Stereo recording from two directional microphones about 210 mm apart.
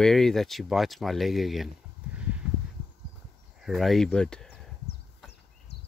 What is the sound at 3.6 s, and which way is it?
Speech, centre (ahead or behind).